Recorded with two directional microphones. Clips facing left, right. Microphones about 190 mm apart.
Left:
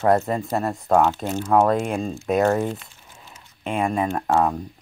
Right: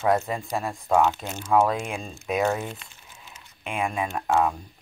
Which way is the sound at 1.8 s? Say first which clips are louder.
Left 8 dB; 40° left (ahead or behind).